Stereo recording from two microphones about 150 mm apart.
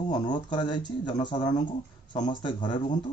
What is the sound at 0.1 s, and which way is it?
A man's voice, 30° left (ahead or behind).